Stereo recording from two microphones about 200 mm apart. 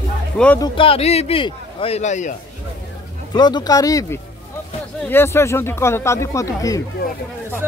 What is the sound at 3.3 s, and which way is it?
Speech, 20° left (ahead or behind).